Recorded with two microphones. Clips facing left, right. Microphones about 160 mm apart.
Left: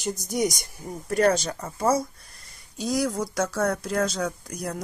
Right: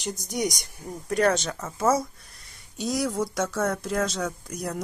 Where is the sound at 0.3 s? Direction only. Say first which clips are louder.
Left 2 dB; centre (ahead or behind).